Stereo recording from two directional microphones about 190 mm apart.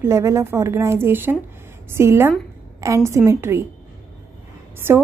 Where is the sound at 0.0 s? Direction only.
15° right (ahead or behind).